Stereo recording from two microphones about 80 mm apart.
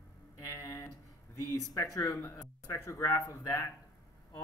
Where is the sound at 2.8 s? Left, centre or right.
Left.